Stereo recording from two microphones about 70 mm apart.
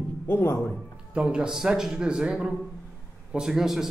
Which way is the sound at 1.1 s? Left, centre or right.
Centre.